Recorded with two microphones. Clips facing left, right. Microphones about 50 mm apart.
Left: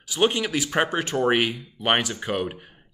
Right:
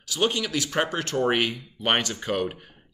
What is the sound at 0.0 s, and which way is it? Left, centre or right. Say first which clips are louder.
Speech: left 3 dB; centre.